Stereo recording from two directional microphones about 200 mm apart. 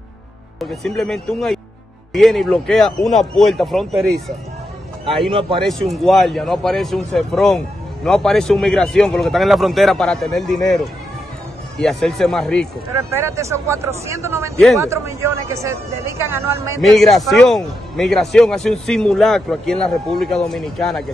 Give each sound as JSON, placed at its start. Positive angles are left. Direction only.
{"t": 0.6, "sound": "speech", "side_deg": 0}
{"t": 5.3, "sound": "speech", "side_deg": -25}
{"t": 5.7, "sound": "speech", "side_deg": 0}
{"t": 12.9, "sound": "a man's voice", "side_deg": -15}
{"t": 16.8, "sound": "speech", "side_deg": 0}